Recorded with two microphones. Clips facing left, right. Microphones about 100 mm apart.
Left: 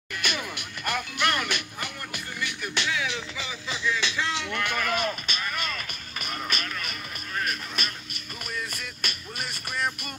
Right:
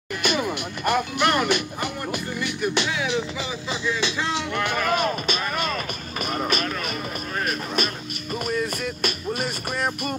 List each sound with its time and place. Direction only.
0.2 s speech: 25° right (ahead or behind)
3.3 s music: 20° right (ahead or behind); by 10.1 s 35° right (ahead or behind)